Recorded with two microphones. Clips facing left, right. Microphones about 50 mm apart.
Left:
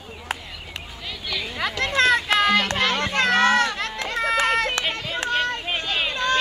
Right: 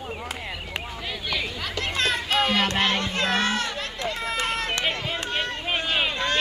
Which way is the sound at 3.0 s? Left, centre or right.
Left.